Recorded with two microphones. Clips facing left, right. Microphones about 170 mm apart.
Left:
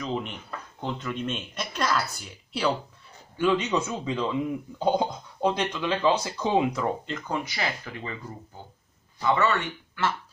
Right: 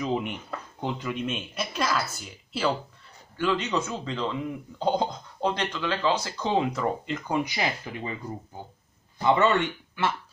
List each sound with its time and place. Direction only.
0.0 s speech: 10° right (ahead or behind)
3.3 s speech: 10° left (ahead or behind)
6.7 s speech: 5° right (ahead or behind)
9.2 s speech: 25° right (ahead or behind)